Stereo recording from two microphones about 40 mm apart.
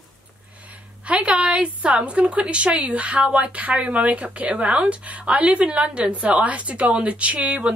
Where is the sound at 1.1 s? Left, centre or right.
Right.